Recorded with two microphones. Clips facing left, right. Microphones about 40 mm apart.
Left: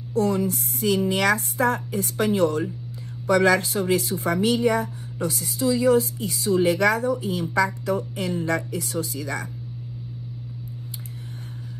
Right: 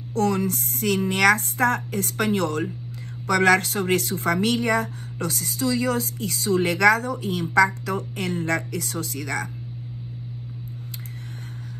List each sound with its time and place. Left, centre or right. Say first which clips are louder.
0.1 s speech: even; right